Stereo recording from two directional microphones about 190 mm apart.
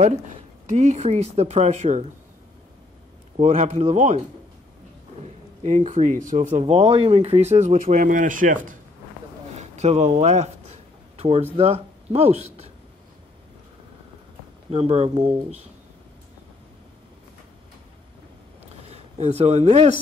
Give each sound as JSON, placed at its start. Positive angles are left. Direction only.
{"t": 0.7, "sound": "speech", "side_deg": -40}
{"t": 3.3, "sound": "speech", "side_deg": -40}
{"t": 5.6, "sound": "speech", "side_deg": -40}
{"t": 14.7, "sound": "speech", "side_deg": -35}
{"t": 18.9, "sound": "speech", "side_deg": -35}